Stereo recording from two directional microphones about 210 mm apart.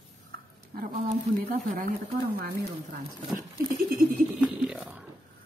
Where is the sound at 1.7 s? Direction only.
45° right (ahead or behind).